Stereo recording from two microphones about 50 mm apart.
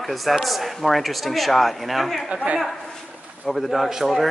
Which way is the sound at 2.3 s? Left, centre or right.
Right.